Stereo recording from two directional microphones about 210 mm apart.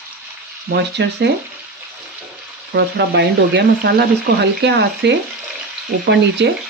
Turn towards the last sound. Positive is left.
turn(degrees=-55)  # may be behind; listen again after turning